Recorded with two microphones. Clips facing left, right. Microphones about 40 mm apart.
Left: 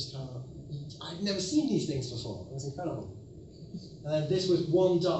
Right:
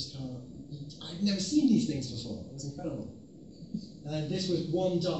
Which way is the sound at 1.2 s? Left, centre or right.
Left.